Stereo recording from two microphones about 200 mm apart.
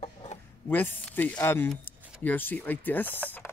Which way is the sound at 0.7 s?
10° left (ahead or behind).